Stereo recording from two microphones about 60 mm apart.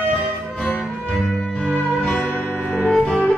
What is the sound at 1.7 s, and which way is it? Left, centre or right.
Music, left.